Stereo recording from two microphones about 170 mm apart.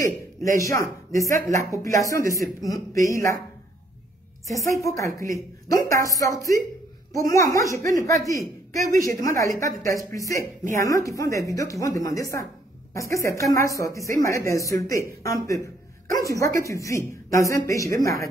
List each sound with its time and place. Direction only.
0.0 s a woman's voice: 20° left (ahead or behind)
4.5 s a woman's voice: 20° left (ahead or behind)